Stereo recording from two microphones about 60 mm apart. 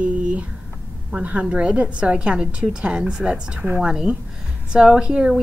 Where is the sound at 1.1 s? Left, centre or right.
Right.